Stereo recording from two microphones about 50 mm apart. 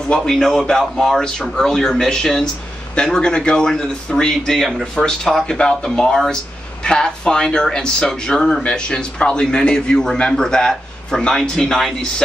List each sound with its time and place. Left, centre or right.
0.2 s speech: centre
6.8 s a man's voice: centre